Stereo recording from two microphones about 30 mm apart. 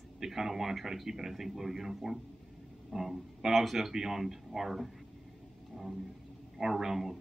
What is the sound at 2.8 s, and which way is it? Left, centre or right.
Music, centre.